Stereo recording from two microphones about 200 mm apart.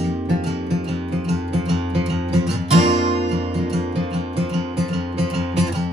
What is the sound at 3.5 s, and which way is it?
Music, centre (ahead or behind).